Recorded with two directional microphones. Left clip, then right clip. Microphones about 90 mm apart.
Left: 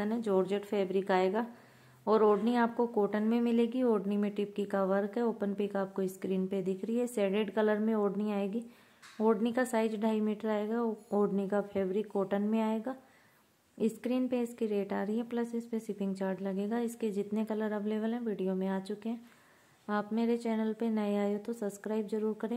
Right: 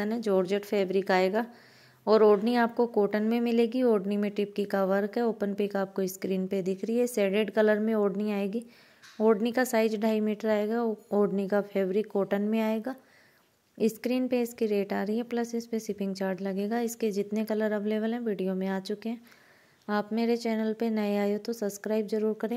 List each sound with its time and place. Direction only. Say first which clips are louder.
0.0 s a woman's voice: right 4 dB; 25° right (ahead or behind)